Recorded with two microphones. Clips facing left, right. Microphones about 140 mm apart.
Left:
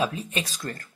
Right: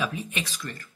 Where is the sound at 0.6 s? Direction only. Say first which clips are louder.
Left 3 dB; 45° left (ahead or behind).